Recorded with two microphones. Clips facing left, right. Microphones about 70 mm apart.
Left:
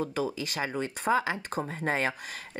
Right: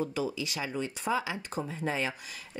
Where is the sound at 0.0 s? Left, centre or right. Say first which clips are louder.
Left 1 dB; left.